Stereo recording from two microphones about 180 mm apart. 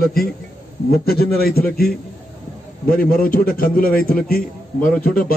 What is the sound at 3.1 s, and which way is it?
A man's voice, 55° left (ahead or behind).